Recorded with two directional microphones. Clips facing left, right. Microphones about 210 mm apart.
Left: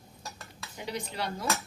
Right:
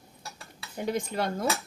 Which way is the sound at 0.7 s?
50° right (ahead or behind).